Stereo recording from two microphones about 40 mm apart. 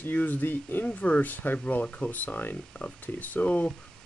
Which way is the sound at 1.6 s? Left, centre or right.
Left.